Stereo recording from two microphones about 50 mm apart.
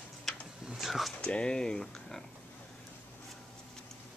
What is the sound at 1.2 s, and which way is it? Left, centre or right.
Speech, left.